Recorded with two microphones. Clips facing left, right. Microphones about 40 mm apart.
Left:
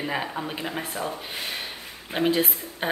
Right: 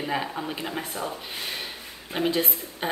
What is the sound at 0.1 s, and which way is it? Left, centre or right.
Speech, centre.